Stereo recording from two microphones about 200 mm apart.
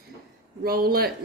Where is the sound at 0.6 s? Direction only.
50° right (ahead or behind).